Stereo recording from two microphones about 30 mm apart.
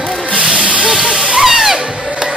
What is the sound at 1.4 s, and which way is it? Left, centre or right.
Music, centre.